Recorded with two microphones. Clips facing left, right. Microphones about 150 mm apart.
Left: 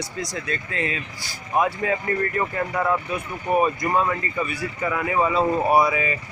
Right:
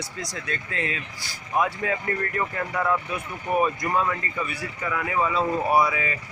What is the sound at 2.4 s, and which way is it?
Speech, 15° left (ahead or behind).